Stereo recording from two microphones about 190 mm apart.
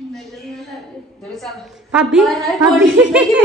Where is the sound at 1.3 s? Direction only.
Centre (ahead or behind).